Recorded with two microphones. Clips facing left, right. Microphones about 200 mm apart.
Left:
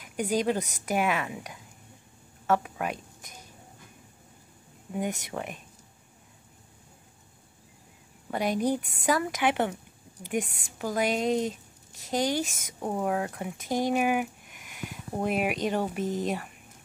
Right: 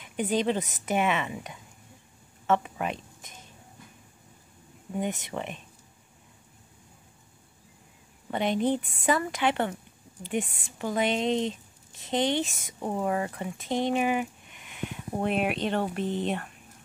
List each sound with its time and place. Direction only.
0.0 s a woman's voice: centre (ahead or behind)
4.9 s a woman's voice: centre (ahead or behind)
8.3 s a woman's voice: centre (ahead or behind)
9.3 s speech: 15° left (ahead or behind)
10.3 s a woman's voice: centre (ahead or behind)
13.8 s a sound: 10° left (ahead or behind)
15.6 s a woman's voice: 10° left (ahead or behind)